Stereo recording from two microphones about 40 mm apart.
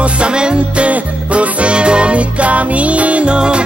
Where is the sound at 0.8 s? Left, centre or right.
Right.